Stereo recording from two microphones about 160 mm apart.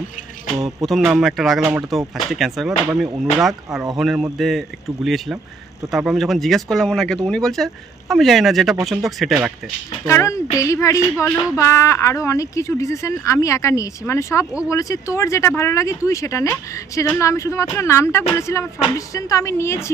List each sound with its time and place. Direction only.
0.6 s speech: 20° right (ahead or behind)
0.8 s speech: centre (ahead or behind)
10.0 s speech: 20° left (ahead or behind)
18.3 s music: 20° left (ahead or behind)
18.9 s speech: 20° left (ahead or behind)